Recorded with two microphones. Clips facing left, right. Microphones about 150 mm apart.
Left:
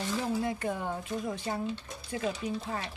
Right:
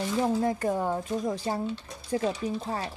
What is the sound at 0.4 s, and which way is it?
Speech, 40° right (ahead or behind).